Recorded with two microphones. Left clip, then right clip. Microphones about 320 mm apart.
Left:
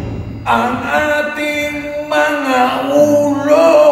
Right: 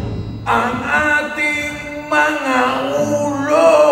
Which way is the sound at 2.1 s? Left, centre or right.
Left.